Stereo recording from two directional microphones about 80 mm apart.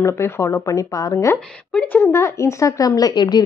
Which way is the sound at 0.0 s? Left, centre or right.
Left.